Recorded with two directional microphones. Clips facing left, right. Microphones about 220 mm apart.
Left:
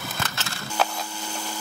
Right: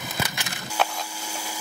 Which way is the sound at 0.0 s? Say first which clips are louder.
Right 1 dB; 15° right (ahead or behind).